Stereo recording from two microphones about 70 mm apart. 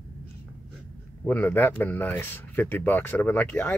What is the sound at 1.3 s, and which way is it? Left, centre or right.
Speech, left.